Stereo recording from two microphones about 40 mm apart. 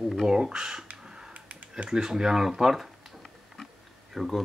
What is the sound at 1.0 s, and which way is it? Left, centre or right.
Computer keyboard, centre.